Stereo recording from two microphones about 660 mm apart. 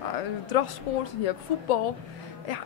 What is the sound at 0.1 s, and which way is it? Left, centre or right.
Speech, left.